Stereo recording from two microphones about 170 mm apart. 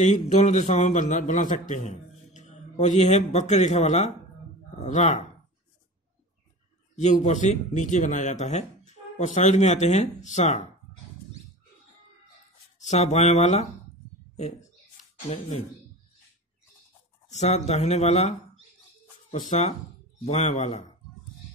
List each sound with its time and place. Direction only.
0.0 s a man's voice: 45° left (ahead or behind)
7.0 s speech: 45° left (ahead or behind)
12.7 s speech: 45° left (ahead or behind)
15.2 s speech: 45° left (ahead or behind)
17.3 s speech: 40° left (ahead or behind)
19.5 s speech: 40° left (ahead or behind)